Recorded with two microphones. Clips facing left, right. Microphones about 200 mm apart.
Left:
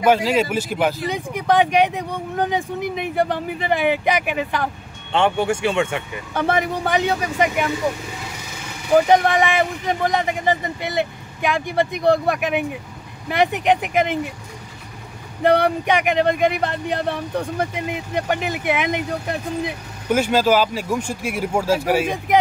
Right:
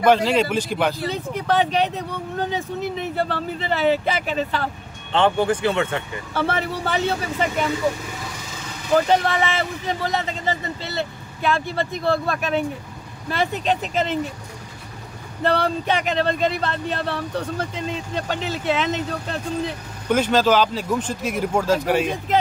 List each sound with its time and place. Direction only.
0.0 s speech: 10° left (ahead or behind)
8.9 s speech: 15° left (ahead or behind)
15.4 s speech: 15° left (ahead or behind)